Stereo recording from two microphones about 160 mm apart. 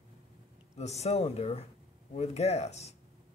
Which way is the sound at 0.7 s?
45° left (ahead or behind).